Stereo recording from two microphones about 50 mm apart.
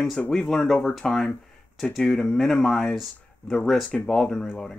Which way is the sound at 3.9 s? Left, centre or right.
Centre.